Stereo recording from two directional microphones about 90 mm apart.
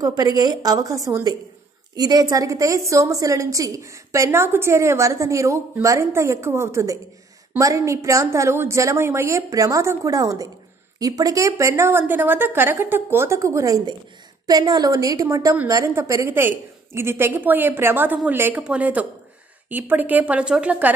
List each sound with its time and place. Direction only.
0.0 s a woman's voice: 45° right (ahead or behind); by 20.9 s 10° right (ahead or behind)